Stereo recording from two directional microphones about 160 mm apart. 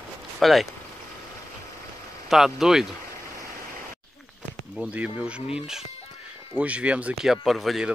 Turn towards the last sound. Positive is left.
turn(degrees=0)  # may be behind; listen again after turning